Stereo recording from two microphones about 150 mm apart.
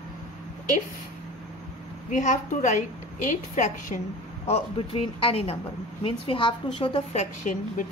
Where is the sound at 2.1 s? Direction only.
55° left (ahead or behind).